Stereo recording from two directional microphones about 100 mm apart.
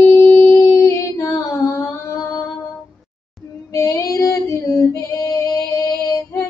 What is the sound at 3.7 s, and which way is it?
Female singing, 35° left (ahead or behind).